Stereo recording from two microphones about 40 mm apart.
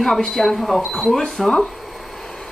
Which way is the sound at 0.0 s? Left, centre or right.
Centre.